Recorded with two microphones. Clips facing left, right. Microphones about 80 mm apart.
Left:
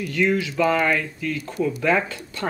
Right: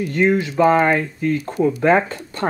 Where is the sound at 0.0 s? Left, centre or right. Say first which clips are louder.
Right 4 dB; right.